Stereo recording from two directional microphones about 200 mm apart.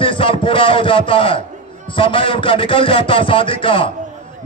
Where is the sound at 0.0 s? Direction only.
25° left (ahead or behind).